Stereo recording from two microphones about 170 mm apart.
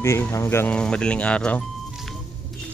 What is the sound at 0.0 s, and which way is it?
Speech, 15° left (ahead or behind).